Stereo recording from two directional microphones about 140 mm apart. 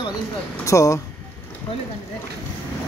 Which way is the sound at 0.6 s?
20° left (ahead or behind).